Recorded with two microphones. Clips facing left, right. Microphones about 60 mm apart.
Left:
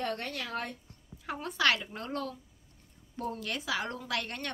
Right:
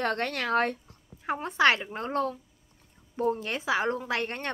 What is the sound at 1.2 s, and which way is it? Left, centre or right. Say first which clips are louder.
A woman's voice: right 6 dB; right.